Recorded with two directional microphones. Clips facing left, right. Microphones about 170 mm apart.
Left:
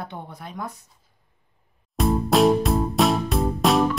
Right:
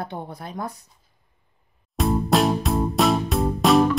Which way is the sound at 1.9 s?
Centre (ahead or behind).